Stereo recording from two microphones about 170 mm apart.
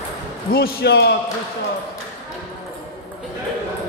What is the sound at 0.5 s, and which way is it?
Speech, 70° left (ahead or behind).